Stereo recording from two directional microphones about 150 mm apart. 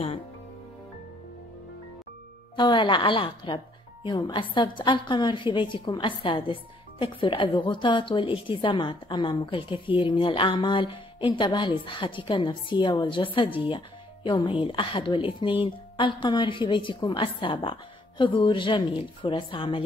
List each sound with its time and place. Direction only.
2.5 s a woman's voice: 30° left (ahead or behind)